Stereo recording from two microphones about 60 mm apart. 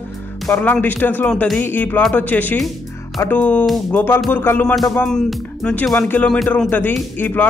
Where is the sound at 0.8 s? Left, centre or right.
Left.